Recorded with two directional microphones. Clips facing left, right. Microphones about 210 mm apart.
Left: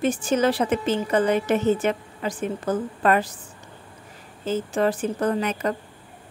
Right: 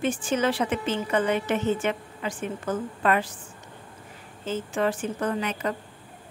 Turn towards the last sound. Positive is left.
turn(degrees=40)  # may be behind; listen again after turning